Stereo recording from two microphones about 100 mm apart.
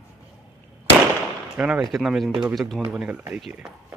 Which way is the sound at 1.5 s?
10° right (ahead or behind).